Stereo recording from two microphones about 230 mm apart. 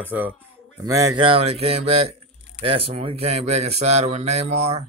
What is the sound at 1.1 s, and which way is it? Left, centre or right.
Speech, right.